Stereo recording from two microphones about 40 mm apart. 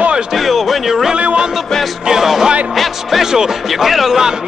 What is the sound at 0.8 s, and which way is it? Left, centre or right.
Music, centre.